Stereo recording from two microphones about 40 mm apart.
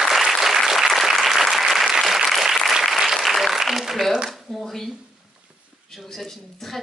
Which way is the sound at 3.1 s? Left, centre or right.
Centre.